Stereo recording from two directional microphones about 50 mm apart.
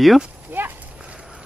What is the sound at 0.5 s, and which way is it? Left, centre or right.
Horse, right.